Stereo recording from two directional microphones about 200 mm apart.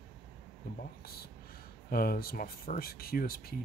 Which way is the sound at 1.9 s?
50° left (ahead or behind).